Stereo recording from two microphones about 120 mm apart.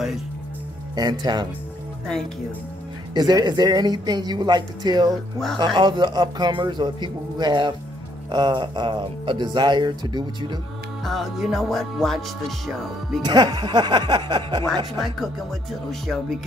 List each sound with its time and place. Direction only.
0.9 s speech: 35° right (ahead or behind)
3.2 s speech: 35° right (ahead or behind)
5.1 s music: 5° left (ahead or behind)
5.8 s speech: 40° right (ahead or behind)
11.1 s music: centre (ahead or behind)
13.2 s speech: 35° right (ahead or behind)
15.9 s music: centre (ahead or behind)